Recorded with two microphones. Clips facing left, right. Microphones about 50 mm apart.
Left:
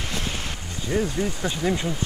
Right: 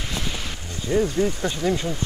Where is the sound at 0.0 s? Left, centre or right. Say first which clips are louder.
Even; left.